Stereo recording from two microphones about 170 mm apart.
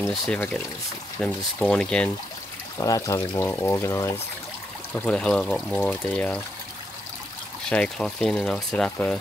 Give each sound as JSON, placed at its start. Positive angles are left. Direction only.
{"t": 0.1, "sound": "speech", "side_deg": 5}
{"t": 2.8, "sound": "speech", "side_deg": 20}
{"t": 7.7, "sound": "speech", "side_deg": 5}